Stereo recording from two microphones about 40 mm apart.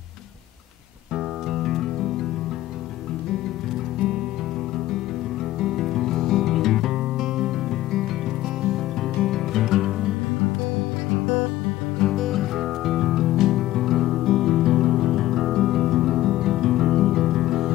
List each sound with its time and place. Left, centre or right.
1.6 s music: centre
5.6 s music: centre
6.0 s music: centre
9.2 s music: centre
9.8 s music: centre
11.2 s music: right
12.0 s music: centre